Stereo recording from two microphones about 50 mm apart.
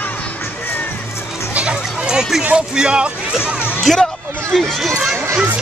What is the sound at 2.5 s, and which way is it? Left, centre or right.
Speech, centre.